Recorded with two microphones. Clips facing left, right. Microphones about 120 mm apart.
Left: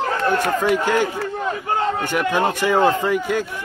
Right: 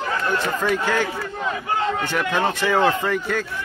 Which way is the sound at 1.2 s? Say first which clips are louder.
Left 3 dB; 35° left (ahead or behind).